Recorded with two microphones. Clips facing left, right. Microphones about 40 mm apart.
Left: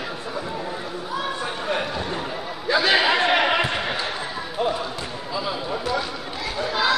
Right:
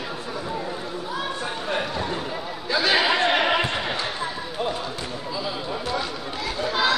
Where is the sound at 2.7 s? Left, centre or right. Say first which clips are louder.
Left 3 dB; left.